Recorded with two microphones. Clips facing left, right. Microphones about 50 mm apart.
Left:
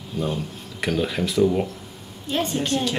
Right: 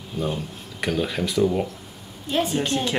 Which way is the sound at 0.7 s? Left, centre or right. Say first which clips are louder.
Left 1 dB; centre.